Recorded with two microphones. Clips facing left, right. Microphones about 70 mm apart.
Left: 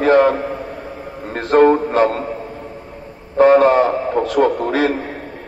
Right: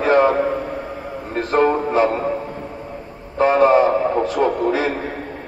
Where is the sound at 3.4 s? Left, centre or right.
Left.